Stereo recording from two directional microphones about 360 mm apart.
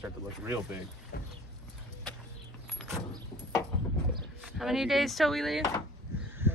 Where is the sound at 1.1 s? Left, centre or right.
Left.